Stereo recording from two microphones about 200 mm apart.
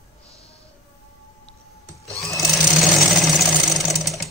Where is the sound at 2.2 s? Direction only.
Centre (ahead or behind).